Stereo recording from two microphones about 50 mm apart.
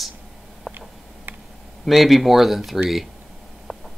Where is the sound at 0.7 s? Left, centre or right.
Right.